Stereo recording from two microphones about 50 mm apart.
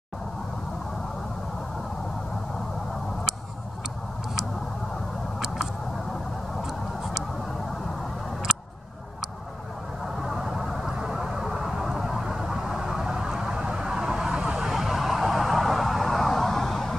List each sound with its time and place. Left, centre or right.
10.2 s vehicle: centre